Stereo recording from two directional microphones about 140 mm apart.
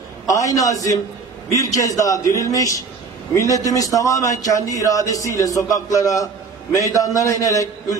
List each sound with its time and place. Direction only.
0.3 s speech: 25° left (ahead or behind)